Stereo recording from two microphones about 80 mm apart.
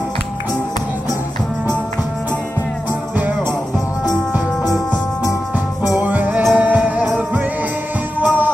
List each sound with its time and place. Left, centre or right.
5.9 s music: centre
8.2 s music: right